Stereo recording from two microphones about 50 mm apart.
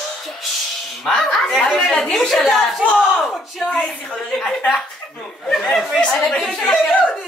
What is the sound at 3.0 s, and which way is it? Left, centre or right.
Speech, centre.